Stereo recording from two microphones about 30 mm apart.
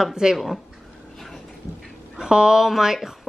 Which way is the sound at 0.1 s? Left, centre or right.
Right.